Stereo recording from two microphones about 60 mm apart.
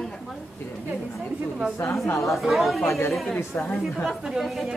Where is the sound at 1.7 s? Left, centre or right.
Left.